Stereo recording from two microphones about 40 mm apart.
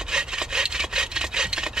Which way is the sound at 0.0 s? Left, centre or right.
Centre.